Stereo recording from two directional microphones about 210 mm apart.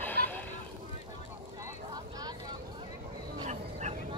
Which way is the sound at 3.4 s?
35° right (ahead or behind).